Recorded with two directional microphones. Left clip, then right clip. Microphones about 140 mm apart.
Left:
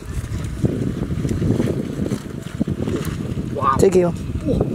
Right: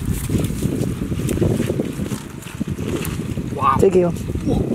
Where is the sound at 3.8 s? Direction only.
15° left (ahead or behind).